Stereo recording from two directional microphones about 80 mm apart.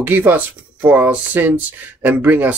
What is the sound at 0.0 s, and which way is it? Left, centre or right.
Speech, right.